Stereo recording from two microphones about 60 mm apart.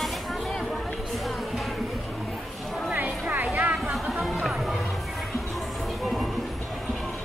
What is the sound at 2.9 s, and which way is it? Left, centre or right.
Music, right.